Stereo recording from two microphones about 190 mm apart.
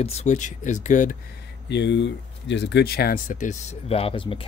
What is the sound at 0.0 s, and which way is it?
Speech, 35° left (ahead or behind).